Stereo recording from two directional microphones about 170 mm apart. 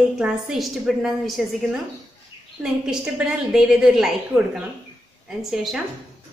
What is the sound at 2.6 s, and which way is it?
A woman's voice, 5° right (ahead or behind).